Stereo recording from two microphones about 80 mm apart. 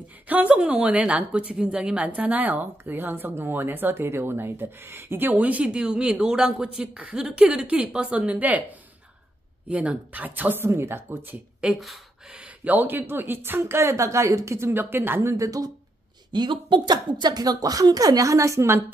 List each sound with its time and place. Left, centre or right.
0.3 s a woman's voice: centre
9.7 s a woman's voice: centre
15.3 s a woman's voice: right
16.3 s a woman's voice: right